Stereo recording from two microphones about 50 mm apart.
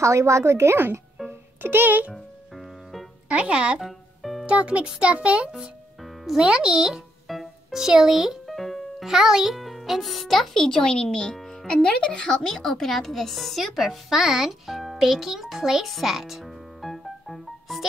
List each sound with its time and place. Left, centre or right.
0.0 s a woman's voice: right
1.6 s a child's voice: right
3.3 s a child's voice: right
3.8 s music: centre
4.5 s a child's voice: right
6.2 s a child's voice: centre
7.2 s music: centre
8.5 s a child's voice: centre